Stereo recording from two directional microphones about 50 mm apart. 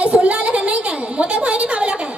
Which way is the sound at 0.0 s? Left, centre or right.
Right.